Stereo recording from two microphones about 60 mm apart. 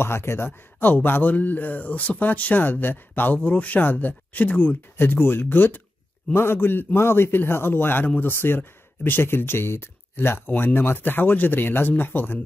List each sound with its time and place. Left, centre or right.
0.0 s speech: left
4.9 s speech: left